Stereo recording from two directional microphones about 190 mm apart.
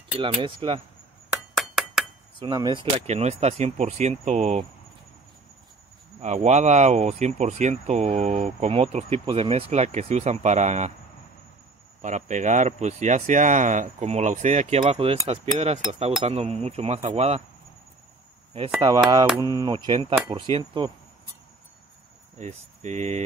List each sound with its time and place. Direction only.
0.2 s speech: 25° right (ahead or behind)
1.3 s chink: centre (ahead or behind)
2.3 s speech: 20° right (ahead or behind)
6.2 s speech: 35° right (ahead or behind)
12.0 s speech: 40° right (ahead or behind)
18.8 s speech: 20° right (ahead or behind)
22.4 s speech: 35° right (ahead or behind)